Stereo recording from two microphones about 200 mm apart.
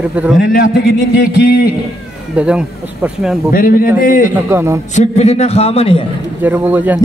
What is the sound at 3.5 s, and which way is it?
Speech, 45° left (ahead or behind).